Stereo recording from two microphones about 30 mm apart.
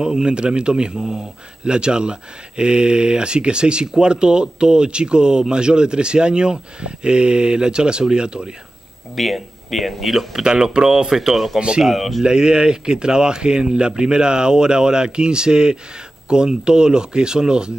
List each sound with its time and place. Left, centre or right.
0.0 s speech: right
9.1 s speech: centre
10.4 s speech: right
11.1 s speech: centre
12.2 s speech: right